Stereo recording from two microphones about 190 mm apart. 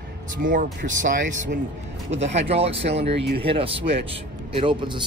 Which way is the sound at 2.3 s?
30° right (ahead or behind).